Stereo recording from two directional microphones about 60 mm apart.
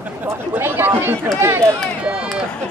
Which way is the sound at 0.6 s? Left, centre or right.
Right.